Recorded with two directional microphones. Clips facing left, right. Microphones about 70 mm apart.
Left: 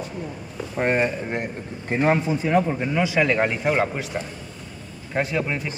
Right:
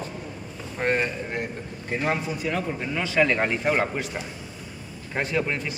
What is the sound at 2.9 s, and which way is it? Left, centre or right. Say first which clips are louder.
A man's voice: even; centre.